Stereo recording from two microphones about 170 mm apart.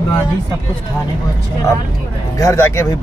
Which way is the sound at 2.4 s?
15° left (ahead or behind).